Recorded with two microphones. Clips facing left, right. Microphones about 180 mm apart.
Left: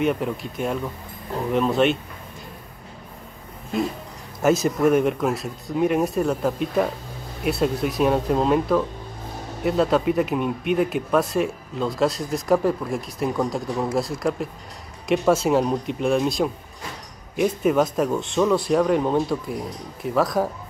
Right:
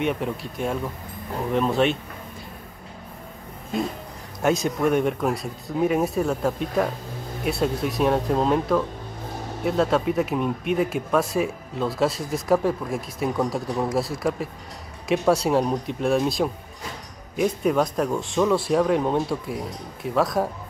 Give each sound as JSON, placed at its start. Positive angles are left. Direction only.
{"t": 0.0, "sound": "speech", "side_deg": 0}
{"t": 4.4, "sound": "speech", "side_deg": 5}